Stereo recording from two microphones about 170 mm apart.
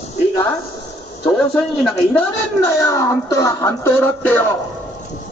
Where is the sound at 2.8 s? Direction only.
15° left (ahead or behind).